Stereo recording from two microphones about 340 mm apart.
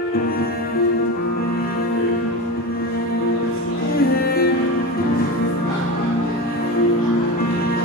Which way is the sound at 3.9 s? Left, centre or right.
Left.